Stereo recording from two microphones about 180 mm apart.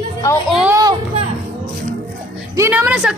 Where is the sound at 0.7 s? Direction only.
20° right (ahead or behind).